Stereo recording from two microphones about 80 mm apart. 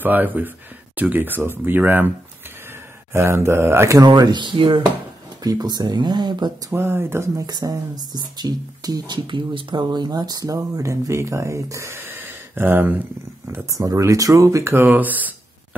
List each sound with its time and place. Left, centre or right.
0.0 s speech: right
3.1 s speech: right
4.0 s speech: right
5.4 s speech: right
6.7 s speech: right
7.4 s speech: right
13.7 s speech: right
14.9 s speech: right